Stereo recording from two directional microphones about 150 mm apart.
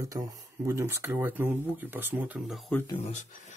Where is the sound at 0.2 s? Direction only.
25° right (ahead or behind); by 2.6 s 5° right (ahead or behind).